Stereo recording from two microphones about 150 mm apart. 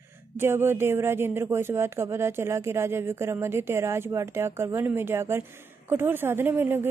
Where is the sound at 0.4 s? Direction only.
15° right (ahead or behind).